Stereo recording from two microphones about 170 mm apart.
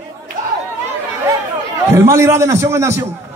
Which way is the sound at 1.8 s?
15° right (ahead or behind).